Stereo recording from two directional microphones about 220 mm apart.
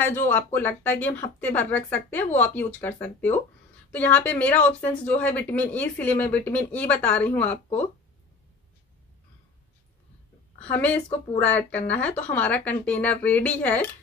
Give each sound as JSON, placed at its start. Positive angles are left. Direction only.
{"t": 0.0, "sound": "speech", "side_deg": 10}
{"t": 10.6, "sound": "speech", "side_deg": 5}